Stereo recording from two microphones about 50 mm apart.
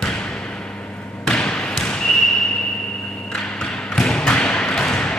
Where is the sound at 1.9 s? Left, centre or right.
Centre.